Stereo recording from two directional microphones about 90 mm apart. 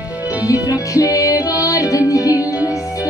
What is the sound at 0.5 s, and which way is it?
Music, 35° left (ahead or behind).